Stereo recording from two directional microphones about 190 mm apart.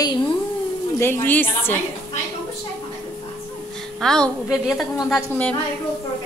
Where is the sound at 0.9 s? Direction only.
15° left (ahead or behind).